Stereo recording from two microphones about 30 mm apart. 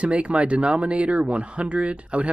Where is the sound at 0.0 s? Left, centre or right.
Right.